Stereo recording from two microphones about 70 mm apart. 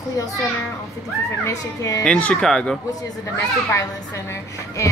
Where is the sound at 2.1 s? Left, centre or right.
Left.